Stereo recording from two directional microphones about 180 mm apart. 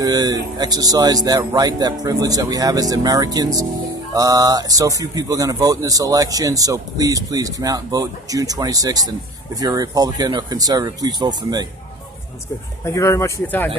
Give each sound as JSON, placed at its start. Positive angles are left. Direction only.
{"t": 0.0, "sound": "speech", "side_deg": -20}
{"t": 12.8, "sound": "speech", "side_deg": 15}